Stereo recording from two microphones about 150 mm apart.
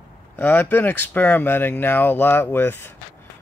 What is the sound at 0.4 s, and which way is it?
Speech, 15° left (ahead or behind).